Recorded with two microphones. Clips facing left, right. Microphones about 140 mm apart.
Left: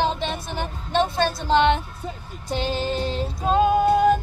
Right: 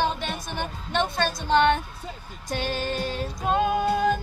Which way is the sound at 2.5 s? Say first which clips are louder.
Left 3 dB; 25° left (ahead or behind).